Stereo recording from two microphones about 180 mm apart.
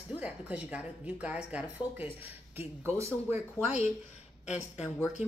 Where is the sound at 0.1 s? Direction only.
5° right (ahead or behind).